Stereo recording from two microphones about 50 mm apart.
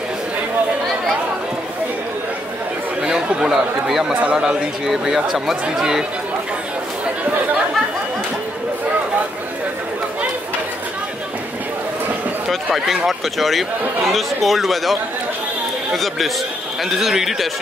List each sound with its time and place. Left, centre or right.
3.0 s chatter: centre
3.3 s speech: centre
4.1 s speech: right
4.4 s speech: centre
12.7 s speech: centre